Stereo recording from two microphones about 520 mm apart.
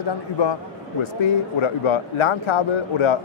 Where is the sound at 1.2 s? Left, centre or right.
Left.